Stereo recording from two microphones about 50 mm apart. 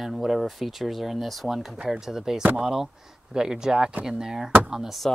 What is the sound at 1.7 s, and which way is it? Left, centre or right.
Speech, right.